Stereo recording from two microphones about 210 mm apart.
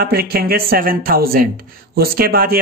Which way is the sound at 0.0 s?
45° right (ahead or behind).